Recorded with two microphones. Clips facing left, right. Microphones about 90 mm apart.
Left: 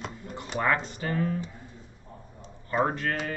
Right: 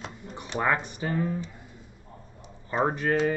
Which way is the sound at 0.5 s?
20° right (ahead or behind).